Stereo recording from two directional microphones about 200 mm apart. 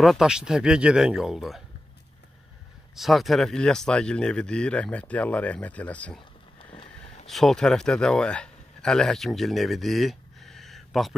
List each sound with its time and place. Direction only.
0.0 s speech: centre (ahead or behind)
3.0 s speech: centre (ahead or behind)
6.6 s vehicle: 25° left (ahead or behind)
7.2 s speech: centre (ahead or behind)